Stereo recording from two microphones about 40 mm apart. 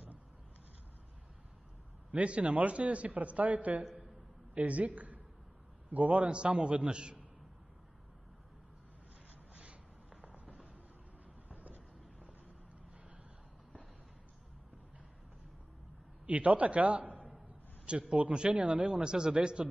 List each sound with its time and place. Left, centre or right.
2.1 s a man's voice: right
6.3 s a man's voice: right
9.5 s a sound: right
10.4 s fireworks: right
11.5 s a sound: right
16.3 s a man's voice: right
17.8 s a man's voice: right